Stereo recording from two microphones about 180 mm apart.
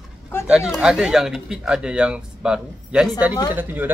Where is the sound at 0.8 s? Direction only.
5° right (ahead or behind).